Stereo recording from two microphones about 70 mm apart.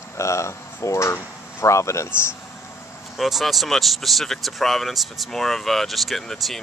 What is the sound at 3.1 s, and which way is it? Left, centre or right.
Speech, centre.